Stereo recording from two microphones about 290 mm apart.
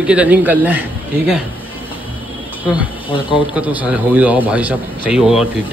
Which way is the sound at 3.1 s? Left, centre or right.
Centre.